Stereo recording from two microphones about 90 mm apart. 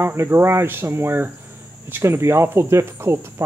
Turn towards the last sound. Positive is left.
turn(degrees=-30)  # may be behind; listen again after turning